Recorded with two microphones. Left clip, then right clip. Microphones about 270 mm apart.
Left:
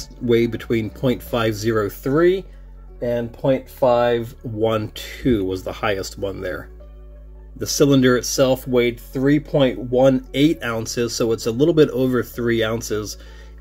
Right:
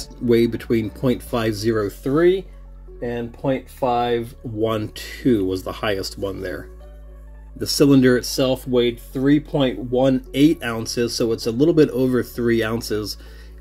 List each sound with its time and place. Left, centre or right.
0.3 s speech: centre
3.9 s speech: left
4.6 s speech: centre